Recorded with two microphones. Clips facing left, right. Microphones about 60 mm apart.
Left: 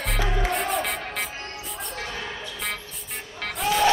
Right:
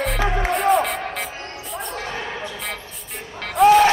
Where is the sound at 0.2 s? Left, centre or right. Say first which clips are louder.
Right 3 dB; right.